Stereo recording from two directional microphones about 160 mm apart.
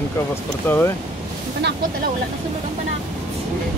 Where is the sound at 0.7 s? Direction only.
10° left (ahead or behind).